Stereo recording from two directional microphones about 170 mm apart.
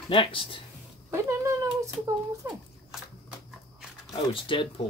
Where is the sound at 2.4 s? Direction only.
15° right (ahead or behind).